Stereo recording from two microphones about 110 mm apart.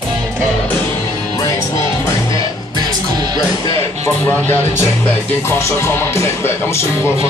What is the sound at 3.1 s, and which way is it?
Music, 40° right (ahead or behind).